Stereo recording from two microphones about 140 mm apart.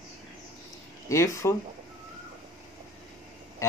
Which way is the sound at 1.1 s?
20° left (ahead or behind).